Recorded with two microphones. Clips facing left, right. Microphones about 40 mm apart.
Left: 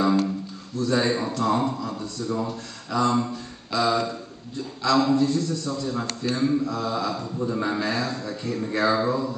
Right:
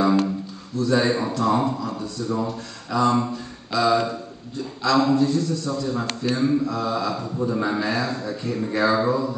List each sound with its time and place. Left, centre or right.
0.7 s a man's voice: centre